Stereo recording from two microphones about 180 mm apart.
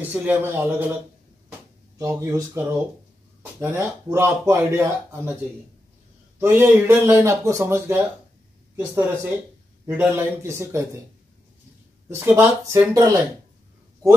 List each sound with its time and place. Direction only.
0.0 s speech: 10° right (ahead or behind)
2.0 s speech: 15° right (ahead or behind)
6.4 s speech: 10° right (ahead or behind)
12.1 s speech: 10° right (ahead or behind)